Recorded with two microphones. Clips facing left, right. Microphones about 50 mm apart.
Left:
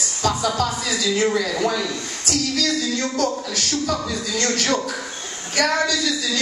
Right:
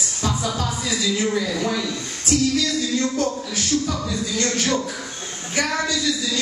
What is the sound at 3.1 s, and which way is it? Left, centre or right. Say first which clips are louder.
A woman's voice: left 1 dB; left.